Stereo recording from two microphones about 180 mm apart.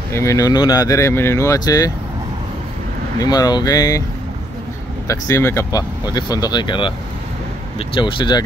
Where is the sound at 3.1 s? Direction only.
20° left (ahead or behind).